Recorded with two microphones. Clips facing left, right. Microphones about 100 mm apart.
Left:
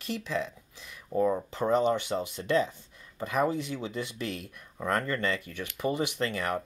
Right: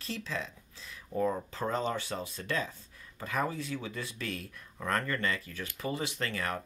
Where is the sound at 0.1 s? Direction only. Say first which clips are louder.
Left 5 dB; 20° left (ahead or behind).